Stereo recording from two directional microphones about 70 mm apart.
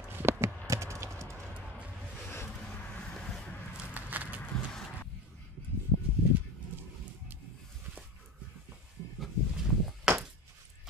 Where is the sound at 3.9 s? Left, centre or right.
Right.